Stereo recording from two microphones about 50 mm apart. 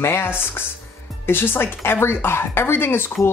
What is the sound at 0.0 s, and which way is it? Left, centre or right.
Speech, left.